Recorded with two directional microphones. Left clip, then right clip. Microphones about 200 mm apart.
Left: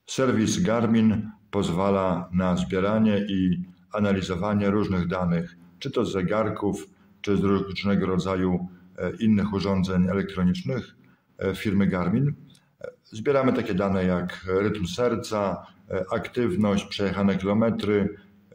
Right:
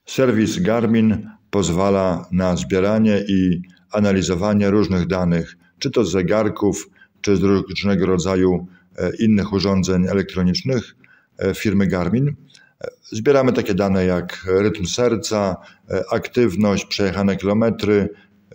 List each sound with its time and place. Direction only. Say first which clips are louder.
0.0 s speech: right 6 dB; 30° right (ahead or behind)